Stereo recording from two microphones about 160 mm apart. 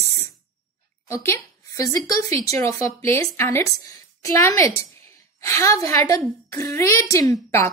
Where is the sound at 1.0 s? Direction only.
15° left (ahead or behind).